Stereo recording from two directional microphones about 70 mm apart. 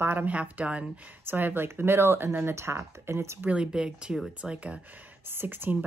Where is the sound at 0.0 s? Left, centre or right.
Right.